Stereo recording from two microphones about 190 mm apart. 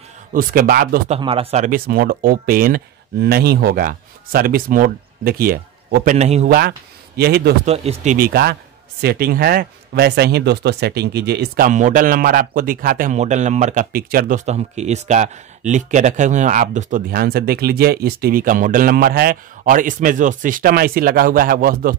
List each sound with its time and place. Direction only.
0.3 s speech: 50° right (ahead or behind)
1.0 s speech: 30° right (ahead or behind)
1.9 s speech: 50° right (ahead or behind)
6.1 s speech: 35° right (ahead or behind)
7.2 s a man's voice: 55° right (ahead or behind)
7.6 s speech: 35° right (ahead or behind); by 21.9 s 50° right (ahead or behind)